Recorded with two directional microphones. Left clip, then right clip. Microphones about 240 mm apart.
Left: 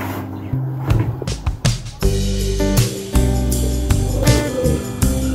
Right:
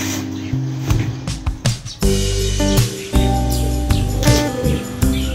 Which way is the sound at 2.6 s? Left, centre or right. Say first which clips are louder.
Even; centre.